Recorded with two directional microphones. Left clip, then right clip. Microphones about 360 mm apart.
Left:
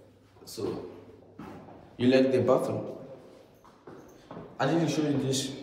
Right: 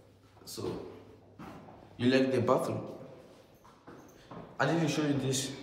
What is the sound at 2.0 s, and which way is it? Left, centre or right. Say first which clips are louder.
Speech: left 5 dB; centre.